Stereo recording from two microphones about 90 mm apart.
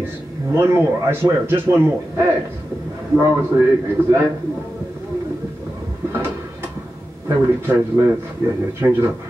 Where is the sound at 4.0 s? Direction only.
25° right (ahead or behind).